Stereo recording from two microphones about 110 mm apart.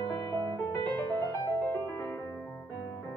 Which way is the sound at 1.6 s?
15° left (ahead or behind).